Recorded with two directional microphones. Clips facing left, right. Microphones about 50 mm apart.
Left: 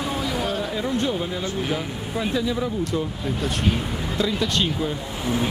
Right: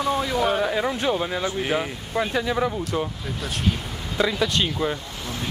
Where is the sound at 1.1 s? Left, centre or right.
Right.